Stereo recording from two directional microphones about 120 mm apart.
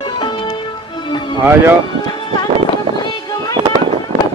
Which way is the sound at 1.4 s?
20° right (ahead or behind).